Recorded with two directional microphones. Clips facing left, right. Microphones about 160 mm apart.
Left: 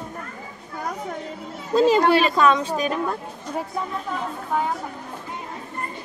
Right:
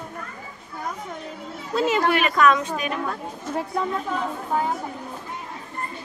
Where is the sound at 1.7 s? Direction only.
35° left (ahead or behind).